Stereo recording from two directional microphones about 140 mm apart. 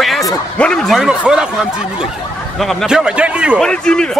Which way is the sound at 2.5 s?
Centre (ahead or behind).